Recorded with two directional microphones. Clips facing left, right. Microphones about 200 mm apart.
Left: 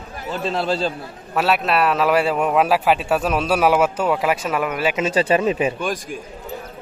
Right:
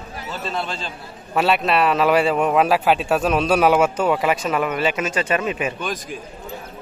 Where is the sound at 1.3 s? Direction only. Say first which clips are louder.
Right 1 dB; centre (ahead or behind).